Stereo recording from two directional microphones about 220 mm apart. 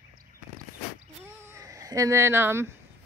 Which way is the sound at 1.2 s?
10° right (ahead or behind).